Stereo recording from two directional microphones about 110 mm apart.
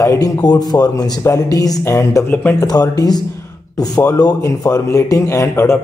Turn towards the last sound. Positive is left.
turn(degrees=25)  # may be behind; listen again after turning